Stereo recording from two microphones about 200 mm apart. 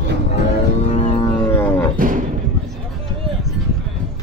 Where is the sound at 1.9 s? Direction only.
40° right (ahead or behind).